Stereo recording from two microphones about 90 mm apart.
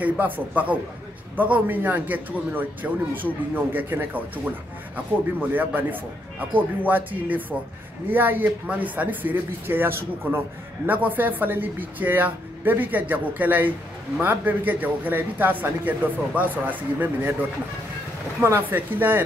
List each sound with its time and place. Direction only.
0.0 s a man's voice: 15° right (ahead or behind)
5.5 s speech: 20° right (ahead or behind)
18.4 s speech: 25° right (ahead or behind)